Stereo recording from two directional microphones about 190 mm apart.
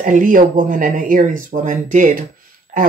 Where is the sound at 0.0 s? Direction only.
45° right (ahead or behind).